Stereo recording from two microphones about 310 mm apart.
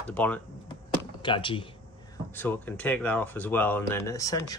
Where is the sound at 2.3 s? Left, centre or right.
Centre.